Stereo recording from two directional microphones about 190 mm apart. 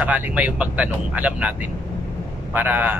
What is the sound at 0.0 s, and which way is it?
A man's voice, 10° right (ahead or behind).